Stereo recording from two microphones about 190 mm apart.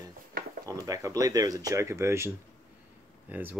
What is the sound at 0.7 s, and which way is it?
Speech, 15° right (ahead or behind).